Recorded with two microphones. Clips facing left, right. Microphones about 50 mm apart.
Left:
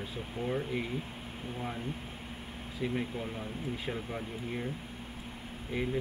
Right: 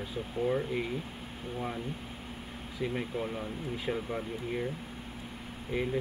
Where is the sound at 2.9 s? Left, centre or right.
Centre.